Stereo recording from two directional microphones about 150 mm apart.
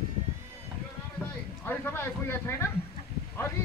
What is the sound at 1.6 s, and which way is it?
Speech, 15° left (ahead or behind).